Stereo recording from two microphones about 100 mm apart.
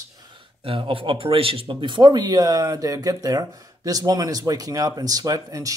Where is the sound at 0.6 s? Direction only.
60° right (ahead or behind).